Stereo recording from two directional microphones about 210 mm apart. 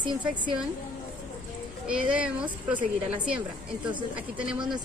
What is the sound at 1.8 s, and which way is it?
A woman's voice, 5° right (ahead or behind).